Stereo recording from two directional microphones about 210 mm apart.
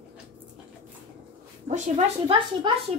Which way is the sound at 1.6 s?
35° right (ahead or behind).